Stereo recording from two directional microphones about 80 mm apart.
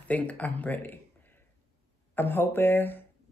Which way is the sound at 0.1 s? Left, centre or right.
Centre.